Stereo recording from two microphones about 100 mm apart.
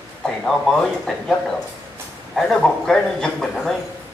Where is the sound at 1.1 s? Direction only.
5° left (ahead or behind).